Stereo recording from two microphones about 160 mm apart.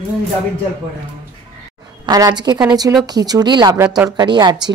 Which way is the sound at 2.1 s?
25° right (ahead or behind).